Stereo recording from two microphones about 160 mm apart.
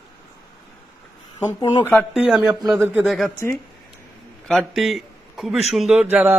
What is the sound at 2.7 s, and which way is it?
Speech, 15° right (ahead or behind).